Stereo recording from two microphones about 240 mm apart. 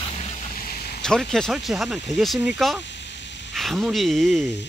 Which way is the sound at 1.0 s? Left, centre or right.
Centre.